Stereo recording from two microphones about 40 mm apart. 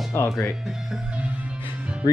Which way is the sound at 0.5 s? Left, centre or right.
Centre.